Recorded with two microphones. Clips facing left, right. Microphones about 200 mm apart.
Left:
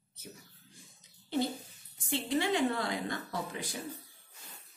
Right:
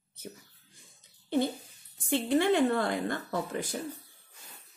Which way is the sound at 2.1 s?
55° right (ahead or behind).